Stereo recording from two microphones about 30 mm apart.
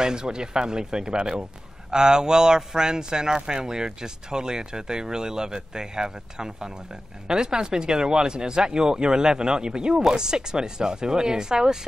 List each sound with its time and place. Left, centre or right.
0.0 s speech: right